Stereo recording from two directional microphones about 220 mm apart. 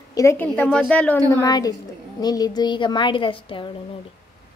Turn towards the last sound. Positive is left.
turn(degrees=25)  # may be behind; listen again after turning